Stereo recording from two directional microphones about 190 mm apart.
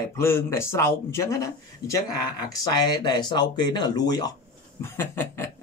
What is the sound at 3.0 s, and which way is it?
Speech, 20° left (ahead or behind).